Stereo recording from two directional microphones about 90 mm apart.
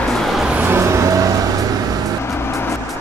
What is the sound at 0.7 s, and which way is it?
Vehicle, 35° right (ahead or behind).